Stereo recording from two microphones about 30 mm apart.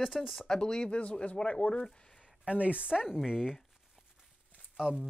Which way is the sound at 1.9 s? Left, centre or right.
Left.